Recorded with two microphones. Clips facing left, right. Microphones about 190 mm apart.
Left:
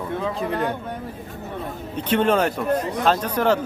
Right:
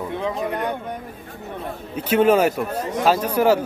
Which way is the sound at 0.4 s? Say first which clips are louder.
Left 1 dB; 30° left (ahead or behind).